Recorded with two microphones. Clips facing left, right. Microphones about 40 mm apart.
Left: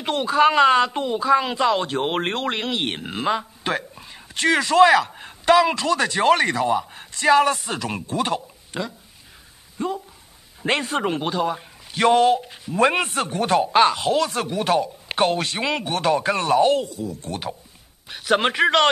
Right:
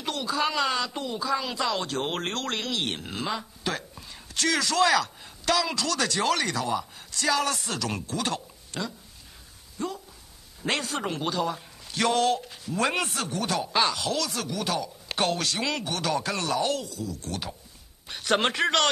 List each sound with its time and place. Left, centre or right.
0.0 s a man's voice: left
18.0 s a man's voice: centre